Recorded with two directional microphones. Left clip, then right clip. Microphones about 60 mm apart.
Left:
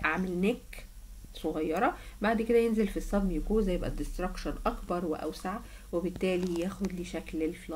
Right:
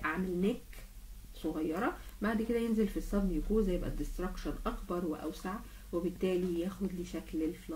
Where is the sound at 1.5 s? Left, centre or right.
Left.